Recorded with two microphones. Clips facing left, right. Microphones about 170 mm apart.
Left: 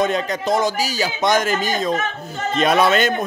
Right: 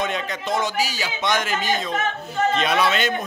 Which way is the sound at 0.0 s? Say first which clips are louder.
Left 6 dB; 40° left (ahead or behind).